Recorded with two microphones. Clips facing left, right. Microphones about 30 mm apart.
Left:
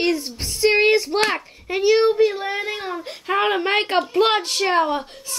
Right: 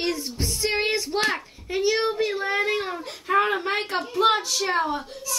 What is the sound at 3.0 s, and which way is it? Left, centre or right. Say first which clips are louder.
Speech: left 3 dB; left.